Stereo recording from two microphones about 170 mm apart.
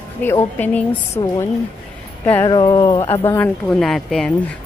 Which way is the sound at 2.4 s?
25° left (ahead or behind).